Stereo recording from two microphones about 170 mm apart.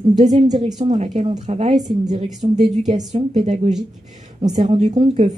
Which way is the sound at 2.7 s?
40° right (ahead or behind).